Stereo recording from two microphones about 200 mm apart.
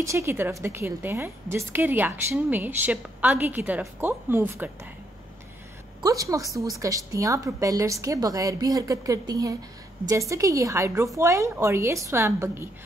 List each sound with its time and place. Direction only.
0.0 s a woman's voice: 15° right (ahead or behind)
5.9 s a woman's voice: 15° right (ahead or behind)